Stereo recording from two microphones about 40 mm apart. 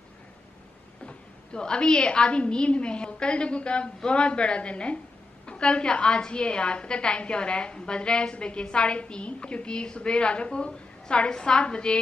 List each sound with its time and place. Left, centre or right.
1.0 s a woman's voice: left